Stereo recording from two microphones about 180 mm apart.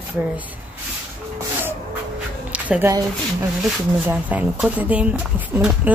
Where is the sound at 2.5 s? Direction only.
10° right (ahead or behind).